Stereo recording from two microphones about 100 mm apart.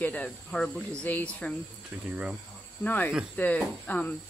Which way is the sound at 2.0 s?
15° right (ahead or behind).